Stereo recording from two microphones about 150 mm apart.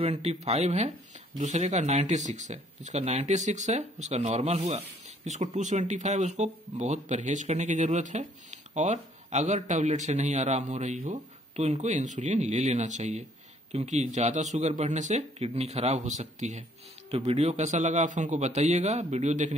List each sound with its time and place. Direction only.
0.0 s speech: 45° right (ahead or behind)